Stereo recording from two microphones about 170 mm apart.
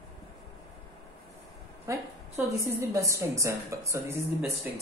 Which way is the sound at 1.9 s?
15° right (ahead or behind).